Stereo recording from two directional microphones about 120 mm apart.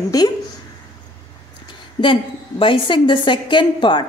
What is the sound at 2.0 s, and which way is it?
A woman's voice, 45° left (ahead or behind).